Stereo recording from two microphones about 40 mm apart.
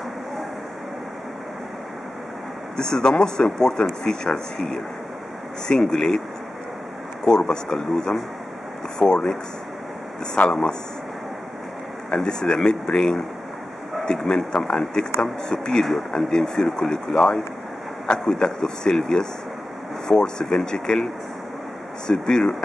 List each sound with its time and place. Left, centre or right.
2.8 s speech: centre
7.2 s speech: centre
10.5 s speech: centre
12.1 s speech: centre
15.8 s speech: centre
18.4 s speech: centre